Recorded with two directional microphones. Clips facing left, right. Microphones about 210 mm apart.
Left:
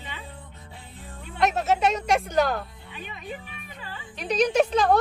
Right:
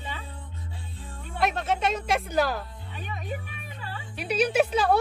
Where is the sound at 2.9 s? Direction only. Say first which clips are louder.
Right 2 dB; 45° right (ahead or behind).